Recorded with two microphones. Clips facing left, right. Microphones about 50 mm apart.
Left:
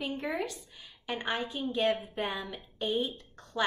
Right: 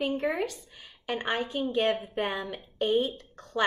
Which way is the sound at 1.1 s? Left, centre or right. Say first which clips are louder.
Right 4 dB; right.